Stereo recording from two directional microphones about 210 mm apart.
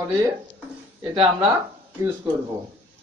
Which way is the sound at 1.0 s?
25° right (ahead or behind).